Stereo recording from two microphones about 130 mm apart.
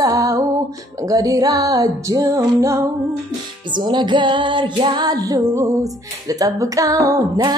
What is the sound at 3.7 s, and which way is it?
Music, 35° right (ahead or behind).